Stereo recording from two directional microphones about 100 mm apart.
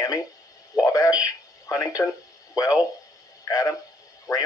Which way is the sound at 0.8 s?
35° left (ahead or behind).